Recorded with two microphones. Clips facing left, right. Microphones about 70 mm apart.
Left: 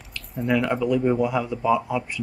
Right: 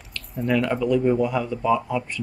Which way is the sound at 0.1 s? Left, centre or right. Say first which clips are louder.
Even; centre.